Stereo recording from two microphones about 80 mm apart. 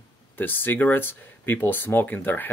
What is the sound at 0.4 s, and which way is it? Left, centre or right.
Speech, left.